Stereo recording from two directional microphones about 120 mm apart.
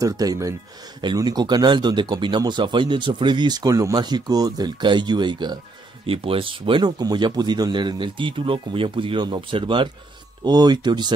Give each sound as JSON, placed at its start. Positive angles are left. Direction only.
{"t": 0.0, "sound": "speech", "side_deg": -30}
{"t": 6.0, "sound": "speech", "side_deg": -50}